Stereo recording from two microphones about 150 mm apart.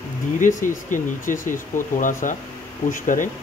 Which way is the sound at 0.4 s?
60° left (ahead or behind).